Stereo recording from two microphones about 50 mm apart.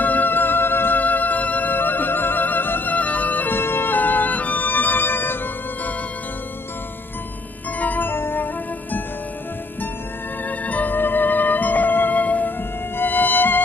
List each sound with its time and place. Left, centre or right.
0.0 s music: left
3.5 s music: left
7.8 s music: left
8.1 s music: left
10.6 s music: left